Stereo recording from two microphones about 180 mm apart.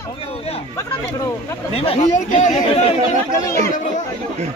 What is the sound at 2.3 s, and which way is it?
Chatter, 40° left (ahead or behind).